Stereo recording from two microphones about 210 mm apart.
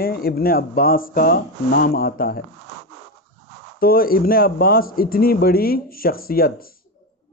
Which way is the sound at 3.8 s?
45° left (ahead or behind).